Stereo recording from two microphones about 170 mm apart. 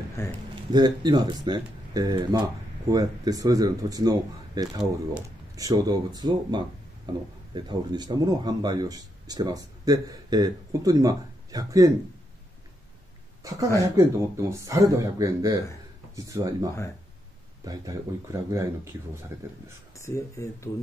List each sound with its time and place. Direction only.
0.2 s speech: 15° left (ahead or behind)
0.7 s speech: 25° right (ahead or behind)
13.4 s a sound: 20° right (ahead or behind)
13.7 s speech: 20° right (ahead or behind)
17.6 s speech: 20° right (ahead or behind)
20.1 s speech: 15° left (ahead or behind)